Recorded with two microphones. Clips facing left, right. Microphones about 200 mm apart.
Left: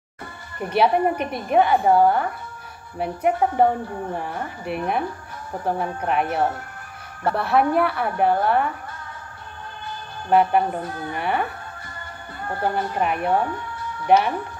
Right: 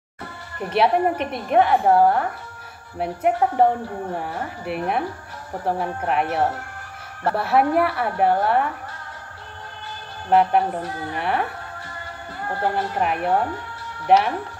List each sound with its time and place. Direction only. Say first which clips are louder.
0.7 s a woman's voice: even; centre (ahead or behind)
10.3 s a woman's voice: even; centre (ahead or behind)
12.7 s a woman's voice: even; centre (ahead or behind)